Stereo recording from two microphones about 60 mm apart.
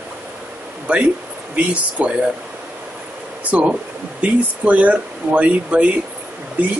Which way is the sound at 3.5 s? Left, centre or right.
Centre.